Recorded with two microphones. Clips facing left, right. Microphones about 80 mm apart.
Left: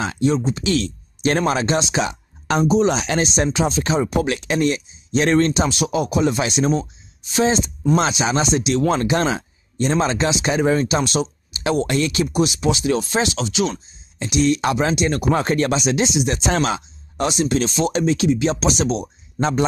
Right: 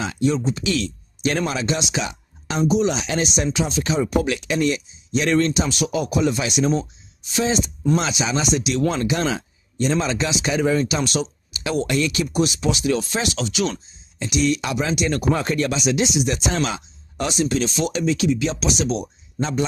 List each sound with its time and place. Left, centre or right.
0.4 s speech: centre
0.7 s speech: left
5.8 s speech: left
12.3 s speech: centre; by 15.0 s left
15.0 s speech: left
15.3 s speech: left
18.5 s speech: left